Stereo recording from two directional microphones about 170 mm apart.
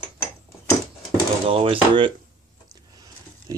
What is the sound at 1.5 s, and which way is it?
Speech, 30° right (ahead or behind).